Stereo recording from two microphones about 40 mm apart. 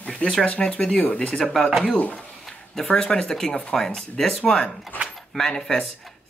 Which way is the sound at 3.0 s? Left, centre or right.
Centre.